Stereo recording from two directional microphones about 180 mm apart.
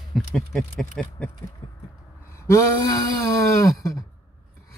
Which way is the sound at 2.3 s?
15° left (ahead or behind).